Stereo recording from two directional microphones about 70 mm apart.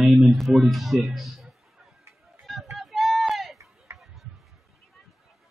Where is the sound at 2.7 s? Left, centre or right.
Centre.